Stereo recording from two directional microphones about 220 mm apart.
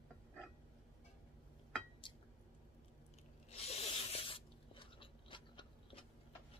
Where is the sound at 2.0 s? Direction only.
20° left (ahead or behind).